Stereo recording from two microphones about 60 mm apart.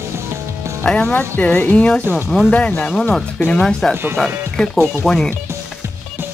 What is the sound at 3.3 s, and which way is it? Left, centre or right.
Speech, left.